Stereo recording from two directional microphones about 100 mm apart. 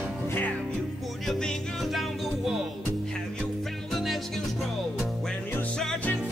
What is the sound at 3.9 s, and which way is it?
Music, centre (ahead or behind).